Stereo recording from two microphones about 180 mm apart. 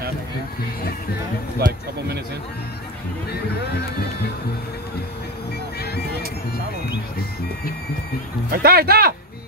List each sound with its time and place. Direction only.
1.6 s speech: 60° right (ahead or behind)
5.8 s music: 60° left (ahead or behind)
8.5 s speech: 55° right (ahead or behind)